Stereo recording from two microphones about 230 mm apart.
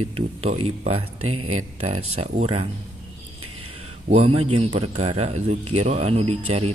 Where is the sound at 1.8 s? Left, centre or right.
Right.